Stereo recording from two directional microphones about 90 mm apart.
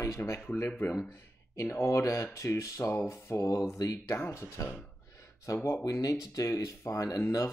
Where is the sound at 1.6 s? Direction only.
30° left (ahead or behind).